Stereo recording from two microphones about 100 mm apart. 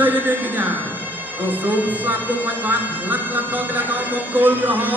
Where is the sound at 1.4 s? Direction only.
20° right (ahead or behind).